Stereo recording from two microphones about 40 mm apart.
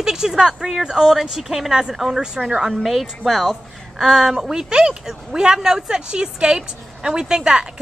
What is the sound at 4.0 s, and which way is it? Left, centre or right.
Speech, centre.